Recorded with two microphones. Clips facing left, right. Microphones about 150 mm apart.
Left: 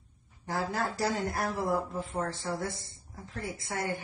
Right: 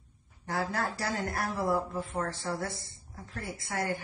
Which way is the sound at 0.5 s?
20° left (ahead or behind).